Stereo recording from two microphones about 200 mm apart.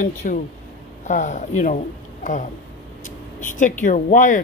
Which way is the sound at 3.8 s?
40° left (ahead or behind).